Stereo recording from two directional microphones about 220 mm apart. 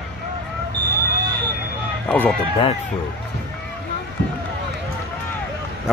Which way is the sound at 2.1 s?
5° left (ahead or behind).